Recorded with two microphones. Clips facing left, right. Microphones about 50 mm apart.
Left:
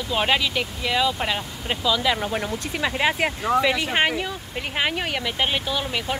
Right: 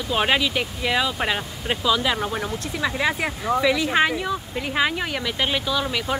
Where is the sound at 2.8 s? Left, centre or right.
Left.